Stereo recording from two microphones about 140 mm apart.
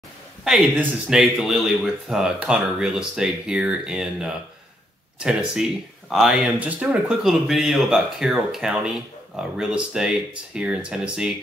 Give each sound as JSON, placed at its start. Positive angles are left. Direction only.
{"t": 0.4, "sound": "speech", "side_deg": -5}